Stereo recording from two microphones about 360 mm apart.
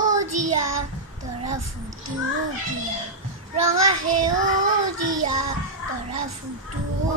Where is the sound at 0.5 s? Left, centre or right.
Right.